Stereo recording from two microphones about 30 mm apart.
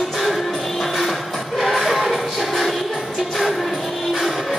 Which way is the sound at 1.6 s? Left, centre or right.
Centre.